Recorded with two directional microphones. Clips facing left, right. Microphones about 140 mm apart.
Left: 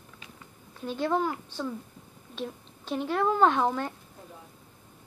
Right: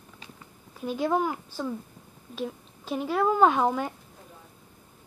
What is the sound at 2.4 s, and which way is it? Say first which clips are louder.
A woman's voice: right 3 dB; 5° right (ahead or behind).